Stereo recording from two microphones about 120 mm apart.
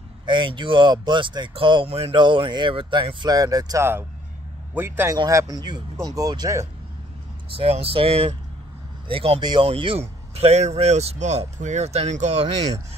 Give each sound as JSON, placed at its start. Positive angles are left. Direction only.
{"t": 0.3, "sound": "speech", "side_deg": -40}
{"t": 1.9, "sound": "speech", "side_deg": -55}
{"t": 2.1, "sound": "speech", "side_deg": -40}
{"t": 4.7, "sound": "a man's voice", "side_deg": -20}
{"t": 5.1, "sound": "speech", "side_deg": -30}
{"t": 7.5, "sound": "speech", "side_deg": -55}
{"t": 9.4, "sound": "speech", "side_deg": -40}
{"t": 9.7, "sound": "speech", "side_deg": -50}